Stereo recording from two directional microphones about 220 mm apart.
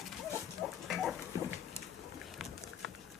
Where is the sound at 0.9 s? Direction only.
Centre (ahead or behind).